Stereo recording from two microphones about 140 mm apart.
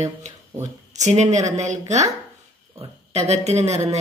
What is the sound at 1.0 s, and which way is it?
Speech, 55° right (ahead or behind).